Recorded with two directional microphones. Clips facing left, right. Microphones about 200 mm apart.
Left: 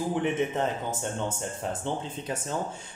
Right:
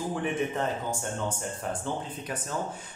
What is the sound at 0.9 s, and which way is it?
Speech, 20° left (ahead or behind).